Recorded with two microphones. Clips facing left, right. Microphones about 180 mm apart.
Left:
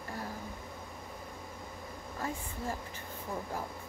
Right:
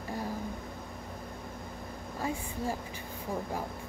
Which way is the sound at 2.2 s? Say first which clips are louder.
Right 4 dB; 15° right (ahead or behind).